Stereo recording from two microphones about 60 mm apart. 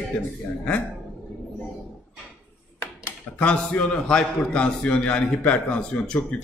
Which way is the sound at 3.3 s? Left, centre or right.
Left.